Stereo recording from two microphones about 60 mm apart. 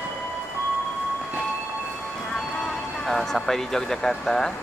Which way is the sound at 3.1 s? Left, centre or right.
Centre.